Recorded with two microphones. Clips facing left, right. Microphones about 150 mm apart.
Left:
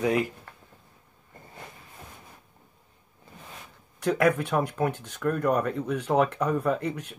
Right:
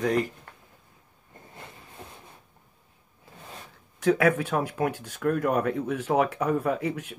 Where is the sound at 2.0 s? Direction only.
30° right (ahead or behind).